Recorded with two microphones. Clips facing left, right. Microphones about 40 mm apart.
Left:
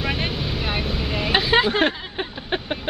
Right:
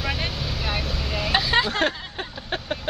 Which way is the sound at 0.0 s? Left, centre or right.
Centre.